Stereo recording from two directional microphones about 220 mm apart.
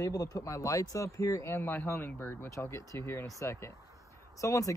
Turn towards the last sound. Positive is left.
turn(degrees=15)  # may be behind; listen again after turning